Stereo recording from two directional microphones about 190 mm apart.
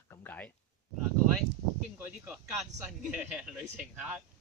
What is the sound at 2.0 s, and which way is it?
Speech, 5° right (ahead or behind).